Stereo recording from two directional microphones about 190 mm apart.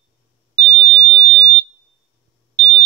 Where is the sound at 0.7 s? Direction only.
5° left (ahead or behind).